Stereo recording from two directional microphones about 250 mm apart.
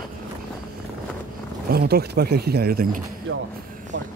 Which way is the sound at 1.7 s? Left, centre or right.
Right.